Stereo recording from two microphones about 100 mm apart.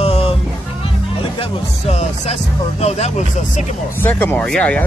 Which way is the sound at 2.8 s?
90° left.